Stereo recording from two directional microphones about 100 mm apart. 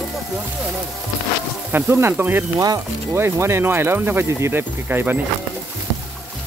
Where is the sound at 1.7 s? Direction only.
25° right (ahead or behind).